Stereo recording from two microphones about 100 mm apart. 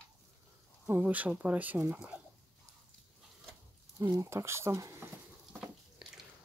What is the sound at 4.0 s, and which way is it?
Speech, 40° right (ahead or behind).